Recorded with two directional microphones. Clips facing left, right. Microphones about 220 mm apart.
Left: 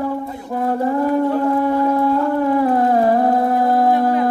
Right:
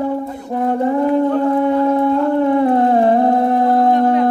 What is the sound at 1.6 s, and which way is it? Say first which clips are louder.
Music: right 2 dB; 20° right (ahead or behind).